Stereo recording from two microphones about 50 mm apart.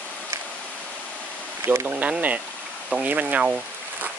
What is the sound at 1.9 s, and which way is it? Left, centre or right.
Speech, right.